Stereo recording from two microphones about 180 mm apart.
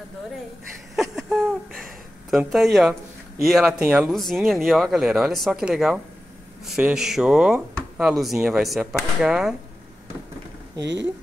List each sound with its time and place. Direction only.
1.1 s a sound: centre (ahead or behind)
3.4 s speech: centre (ahead or behind)
10.8 s speech: 75° right (ahead or behind)